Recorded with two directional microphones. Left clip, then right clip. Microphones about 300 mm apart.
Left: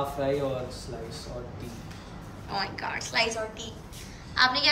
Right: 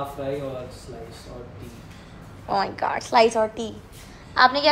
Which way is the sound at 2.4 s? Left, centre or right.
Centre.